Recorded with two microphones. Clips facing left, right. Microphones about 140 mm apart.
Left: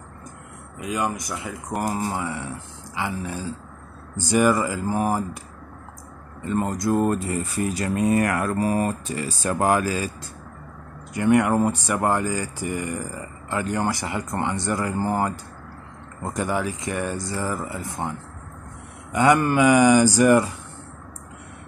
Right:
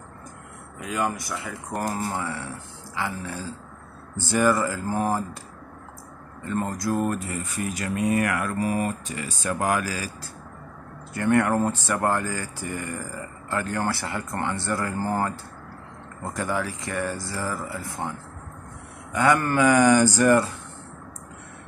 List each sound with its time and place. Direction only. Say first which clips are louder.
0.8 s speech: left 1 dB; 15° left (ahead or behind)
6.4 s speech: left 3 dB; 20° left (ahead or behind)
11.1 s speech: left 2 dB; 15° left (ahead or behind)
16.3 s speech: left 3 dB; 20° left (ahead or behind)
19.1 s speech: left 3 dB; 20° left (ahead or behind)